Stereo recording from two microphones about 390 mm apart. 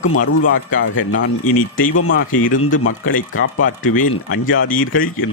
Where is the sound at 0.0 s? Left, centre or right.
Left.